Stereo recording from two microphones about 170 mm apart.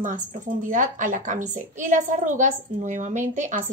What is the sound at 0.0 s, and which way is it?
A woman's voice, 50° right (ahead or behind).